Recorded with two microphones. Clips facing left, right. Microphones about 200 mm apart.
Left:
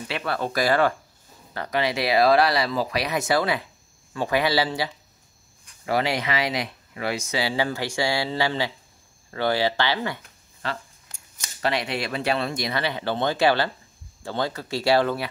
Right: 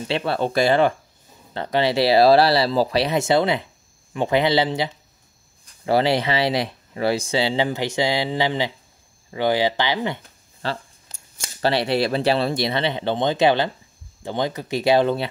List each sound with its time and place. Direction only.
0.1 s speech: 25° right (ahead or behind)